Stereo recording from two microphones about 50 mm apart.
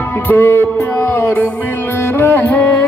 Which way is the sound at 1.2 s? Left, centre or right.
Left.